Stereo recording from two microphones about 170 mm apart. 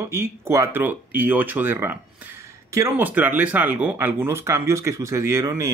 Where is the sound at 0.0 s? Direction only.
15° right (ahead or behind).